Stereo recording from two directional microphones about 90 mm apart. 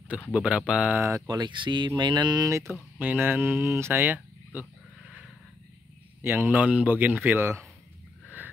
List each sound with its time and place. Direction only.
0.3 s speech: 15° right (ahead or behind)
1.2 s speech: 55° right (ahead or behind)
2.4 s speech: 30° right (ahead or behind)
3.0 s speech: 20° right (ahead or behind)
6.2 s a man's voice: 25° right (ahead or behind)